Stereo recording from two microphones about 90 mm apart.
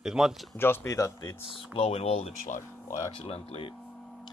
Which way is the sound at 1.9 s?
90° left.